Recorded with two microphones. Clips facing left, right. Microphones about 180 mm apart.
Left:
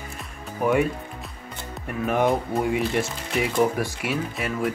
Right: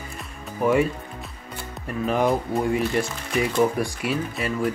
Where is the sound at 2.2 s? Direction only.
Centre (ahead or behind).